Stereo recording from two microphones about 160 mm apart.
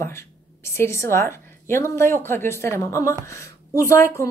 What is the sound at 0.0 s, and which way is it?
A woman's voice, 15° left (ahead or behind).